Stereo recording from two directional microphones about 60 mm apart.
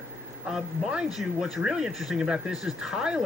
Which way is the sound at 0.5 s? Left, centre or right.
Centre.